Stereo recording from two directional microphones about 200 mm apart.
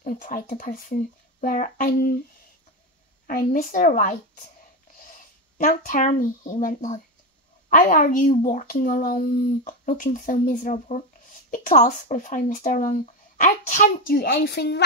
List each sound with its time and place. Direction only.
0.0 s a child's voice: 40° left (ahead or behind)
3.3 s a child's voice: 45° left (ahead or behind)
5.6 s a child's voice: 45° left (ahead or behind)